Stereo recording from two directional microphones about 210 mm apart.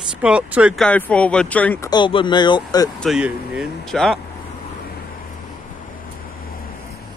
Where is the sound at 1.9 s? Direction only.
25° left (ahead or behind).